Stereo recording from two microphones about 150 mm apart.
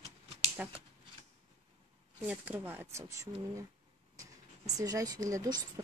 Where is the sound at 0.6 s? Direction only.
5° right (ahead or behind).